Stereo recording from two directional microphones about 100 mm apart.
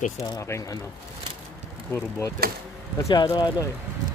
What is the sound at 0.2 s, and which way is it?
Speech, 30° left (ahead or behind).